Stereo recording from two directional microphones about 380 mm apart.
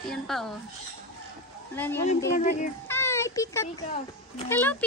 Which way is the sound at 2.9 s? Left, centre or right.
Centre.